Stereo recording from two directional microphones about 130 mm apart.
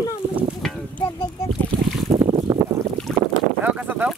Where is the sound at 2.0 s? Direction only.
40° right (ahead or behind).